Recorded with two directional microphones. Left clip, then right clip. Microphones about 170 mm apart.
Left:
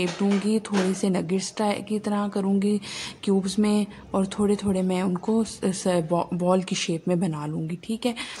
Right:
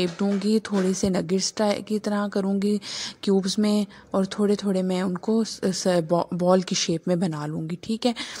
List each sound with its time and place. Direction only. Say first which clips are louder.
0.0 s speech: even; 35° right (ahead or behind)